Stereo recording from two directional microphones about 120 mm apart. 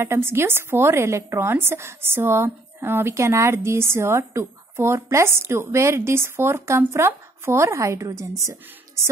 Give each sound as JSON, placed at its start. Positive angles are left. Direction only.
{"t": 0.0, "sound": "a woman's voice", "side_deg": -20}